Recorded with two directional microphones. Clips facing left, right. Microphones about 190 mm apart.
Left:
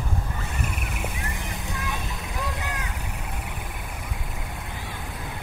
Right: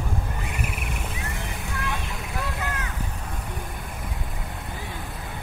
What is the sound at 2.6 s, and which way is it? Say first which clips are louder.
Vehicle: right 2 dB; 15° left (ahead or behind).